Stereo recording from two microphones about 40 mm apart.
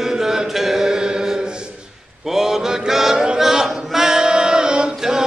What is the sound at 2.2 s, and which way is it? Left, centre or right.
Mantra, centre.